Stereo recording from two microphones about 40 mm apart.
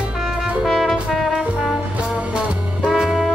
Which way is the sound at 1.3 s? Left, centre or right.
Right.